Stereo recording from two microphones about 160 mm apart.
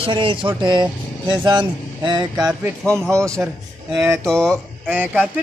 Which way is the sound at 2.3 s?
5° right (ahead or behind).